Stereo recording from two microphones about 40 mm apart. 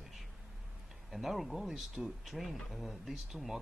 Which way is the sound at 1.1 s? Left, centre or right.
Centre.